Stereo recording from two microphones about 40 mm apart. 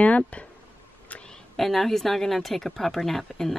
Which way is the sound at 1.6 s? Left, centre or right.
Centre.